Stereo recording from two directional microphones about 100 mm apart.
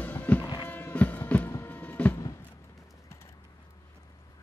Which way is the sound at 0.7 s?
15° left (ahead or behind).